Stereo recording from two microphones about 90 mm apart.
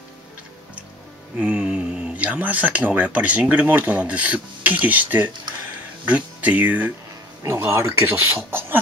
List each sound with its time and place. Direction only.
1.4 s speech: 15° right (ahead or behind)
7.4 s speech: 30° right (ahead or behind)